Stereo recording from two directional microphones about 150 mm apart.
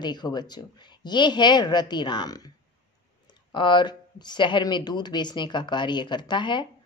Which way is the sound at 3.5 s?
30° left (ahead or behind).